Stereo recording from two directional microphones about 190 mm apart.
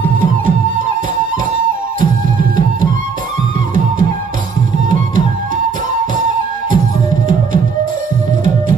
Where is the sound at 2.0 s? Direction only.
45° right (ahead or behind).